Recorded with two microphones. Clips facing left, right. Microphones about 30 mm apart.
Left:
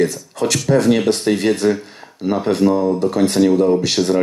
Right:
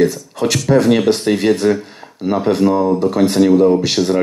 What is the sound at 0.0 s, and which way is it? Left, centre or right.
Speech, centre.